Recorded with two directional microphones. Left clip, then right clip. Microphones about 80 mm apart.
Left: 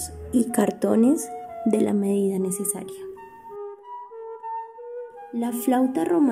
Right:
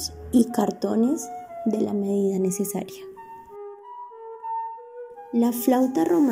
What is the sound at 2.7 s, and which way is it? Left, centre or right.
Speech, right.